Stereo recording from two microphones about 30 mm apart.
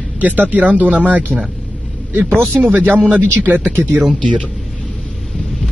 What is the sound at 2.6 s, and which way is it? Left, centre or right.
Speech, right.